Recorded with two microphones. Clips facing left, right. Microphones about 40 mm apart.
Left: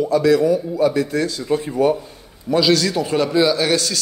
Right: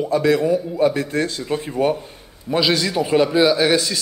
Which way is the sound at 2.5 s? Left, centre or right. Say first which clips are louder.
Left 3 dB; centre.